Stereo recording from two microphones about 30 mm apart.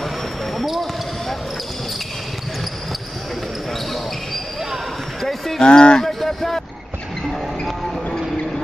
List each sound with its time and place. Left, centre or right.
0.6 s basketball bounce: centre
5.6 s speech: left
6.0 s a sound: centre